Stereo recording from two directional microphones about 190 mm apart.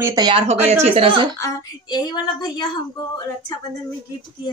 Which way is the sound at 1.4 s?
20° left (ahead or behind).